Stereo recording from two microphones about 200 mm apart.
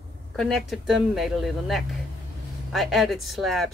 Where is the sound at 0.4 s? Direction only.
Centre (ahead or behind).